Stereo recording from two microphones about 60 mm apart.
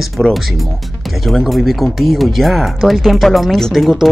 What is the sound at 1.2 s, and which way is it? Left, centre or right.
Speech, centre.